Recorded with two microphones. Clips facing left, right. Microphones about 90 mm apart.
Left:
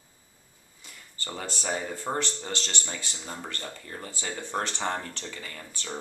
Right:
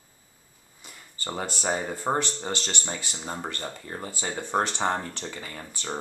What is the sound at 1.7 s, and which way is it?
Speech, 25° right (ahead or behind).